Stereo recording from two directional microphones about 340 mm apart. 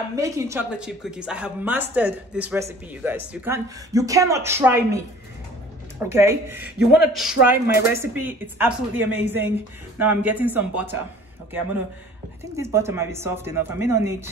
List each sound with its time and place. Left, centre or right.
0.1 s speech: centre
12.5 s speech: centre